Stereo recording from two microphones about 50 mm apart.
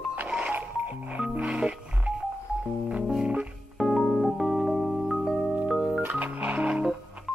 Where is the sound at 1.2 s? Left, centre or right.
Right.